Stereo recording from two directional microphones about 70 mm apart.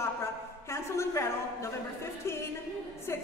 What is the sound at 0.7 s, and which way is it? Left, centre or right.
A woman's voice, left.